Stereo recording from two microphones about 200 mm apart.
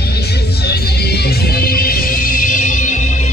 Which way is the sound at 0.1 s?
55° left (ahead or behind).